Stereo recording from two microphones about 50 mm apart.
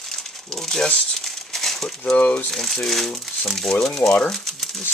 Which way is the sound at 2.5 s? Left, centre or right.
Centre.